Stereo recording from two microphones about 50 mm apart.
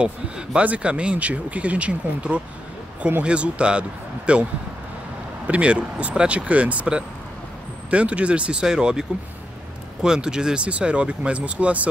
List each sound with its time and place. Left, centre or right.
0.0 s speech: centre
5.5 s speech: right
10.0 s speech: centre